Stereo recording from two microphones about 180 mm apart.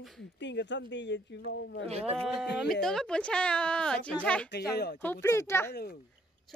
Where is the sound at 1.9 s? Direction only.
35° right (ahead or behind).